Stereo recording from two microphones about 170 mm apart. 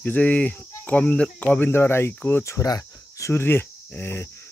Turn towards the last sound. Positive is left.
turn(degrees=15)  # may be behind; listen again after turning